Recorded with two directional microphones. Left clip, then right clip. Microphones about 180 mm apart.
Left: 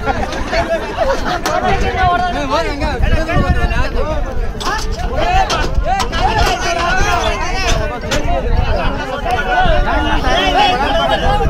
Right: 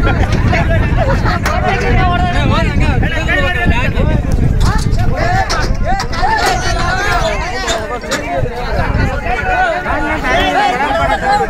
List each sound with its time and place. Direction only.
10.4 s chatter: 20° left (ahead or behind)